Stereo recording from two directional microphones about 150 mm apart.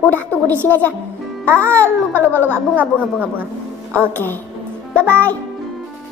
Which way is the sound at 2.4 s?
10° right (ahead or behind).